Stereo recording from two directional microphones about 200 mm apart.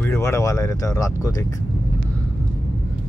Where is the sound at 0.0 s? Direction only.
15° left (ahead or behind).